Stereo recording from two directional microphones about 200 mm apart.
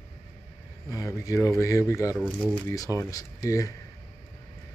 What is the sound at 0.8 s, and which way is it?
Speech, 15° left (ahead or behind).